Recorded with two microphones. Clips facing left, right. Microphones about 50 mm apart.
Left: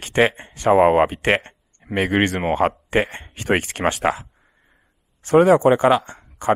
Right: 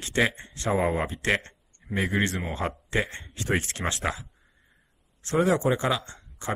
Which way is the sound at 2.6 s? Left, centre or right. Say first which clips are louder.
Left 11 dB; left.